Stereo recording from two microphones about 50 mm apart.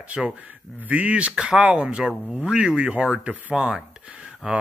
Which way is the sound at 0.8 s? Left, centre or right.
Right.